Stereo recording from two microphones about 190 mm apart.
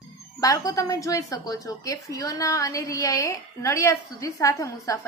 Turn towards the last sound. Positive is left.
turn(degrees=15)  # may be behind; listen again after turning